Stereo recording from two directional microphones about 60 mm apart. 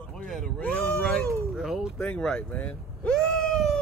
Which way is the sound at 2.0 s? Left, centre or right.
Centre.